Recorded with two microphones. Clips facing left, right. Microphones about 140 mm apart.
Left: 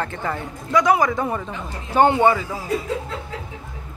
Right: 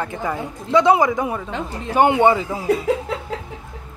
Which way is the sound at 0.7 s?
25° right (ahead or behind).